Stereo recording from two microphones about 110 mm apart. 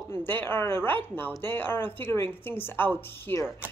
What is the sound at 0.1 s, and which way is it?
A man's voice, 20° left (ahead or behind).